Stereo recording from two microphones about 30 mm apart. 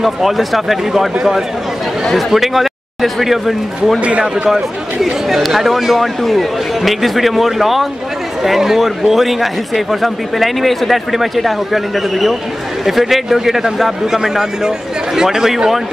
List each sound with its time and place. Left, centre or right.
0.0 s speech: centre
2.1 s a man's voice: centre